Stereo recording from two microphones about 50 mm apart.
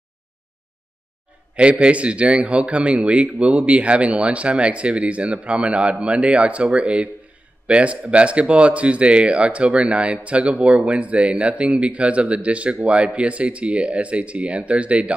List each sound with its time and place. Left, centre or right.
1.5 s a man's voice: right